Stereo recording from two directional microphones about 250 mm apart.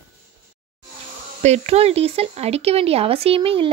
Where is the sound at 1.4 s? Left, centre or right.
Right.